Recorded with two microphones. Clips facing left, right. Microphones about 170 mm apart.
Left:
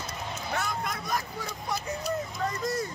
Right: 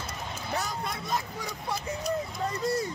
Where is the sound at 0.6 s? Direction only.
35° right (ahead or behind).